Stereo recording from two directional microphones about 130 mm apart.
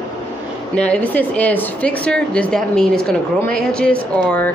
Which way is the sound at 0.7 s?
10° left (ahead or behind).